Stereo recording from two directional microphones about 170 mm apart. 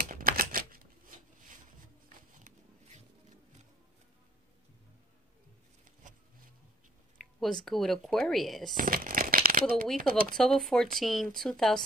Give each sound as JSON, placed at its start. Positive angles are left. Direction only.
{"t": 0.0, "sound": "typewriter", "side_deg": -55}
{"t": 2.3, "sound": "a sound", "side_deg": -50}
{"t": 7.2, "sound": "speech", "side_deg": 0}
{"t": 8.7, "sound": "speech", "side_deg": -55}
{"t": 10.3, "sound": "speech", "side_deg": 5}